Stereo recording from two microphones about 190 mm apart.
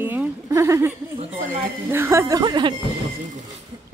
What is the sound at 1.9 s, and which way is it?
Speech, 15° right (ahead or behind).